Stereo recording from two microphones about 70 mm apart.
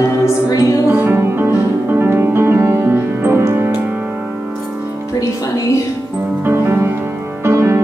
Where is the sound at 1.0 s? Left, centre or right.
Right.